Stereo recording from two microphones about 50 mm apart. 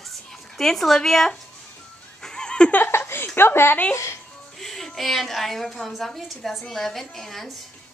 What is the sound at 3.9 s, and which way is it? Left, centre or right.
Speech, left.